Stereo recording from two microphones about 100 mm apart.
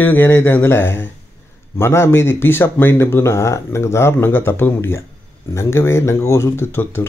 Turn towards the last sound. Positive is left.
turn(degrees=25)  # may be behind; listen again after turning